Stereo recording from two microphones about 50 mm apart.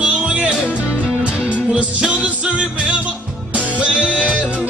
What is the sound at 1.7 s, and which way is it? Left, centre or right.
Music, right.